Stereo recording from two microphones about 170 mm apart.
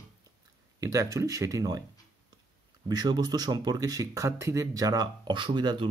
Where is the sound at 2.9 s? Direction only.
25° right (ahead or behind).